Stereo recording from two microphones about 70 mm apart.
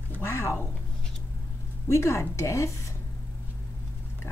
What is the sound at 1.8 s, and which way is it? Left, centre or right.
Speech, left.